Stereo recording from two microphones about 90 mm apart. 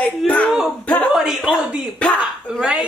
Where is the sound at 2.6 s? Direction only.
10° right (ahead or behind).